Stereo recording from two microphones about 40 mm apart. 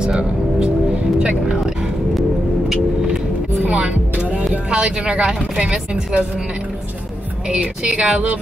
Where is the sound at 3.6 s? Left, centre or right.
Right.